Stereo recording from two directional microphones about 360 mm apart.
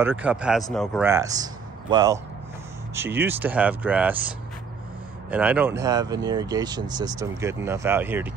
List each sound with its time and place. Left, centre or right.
0.0 s a man's voice: centre
5.3 s speech: centre